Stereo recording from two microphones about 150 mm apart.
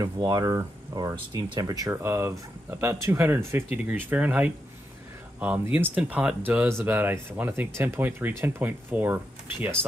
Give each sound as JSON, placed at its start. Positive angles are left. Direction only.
{"t": 0.0, "sound": "speech", "side_deg": -25}